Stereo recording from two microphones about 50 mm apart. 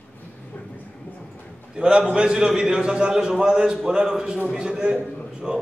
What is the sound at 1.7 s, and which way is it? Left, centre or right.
A man's voice, centre.